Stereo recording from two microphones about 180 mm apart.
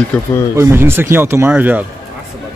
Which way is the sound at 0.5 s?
15° right (ahead or behind).